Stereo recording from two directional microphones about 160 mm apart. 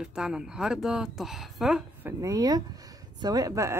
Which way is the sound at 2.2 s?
25° right (ahead or behind).